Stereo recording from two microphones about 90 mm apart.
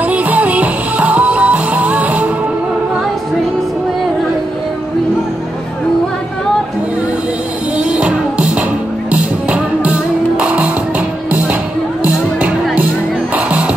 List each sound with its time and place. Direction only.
0.0 s music: 15° right (ahead or behind)
7.9 s music: 15° right (ahead or behind)
12.0 s music: 15° right (ahead or behind)